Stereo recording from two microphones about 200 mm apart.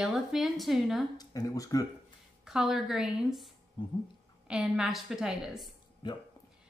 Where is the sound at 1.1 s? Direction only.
15° left (ahead or behind).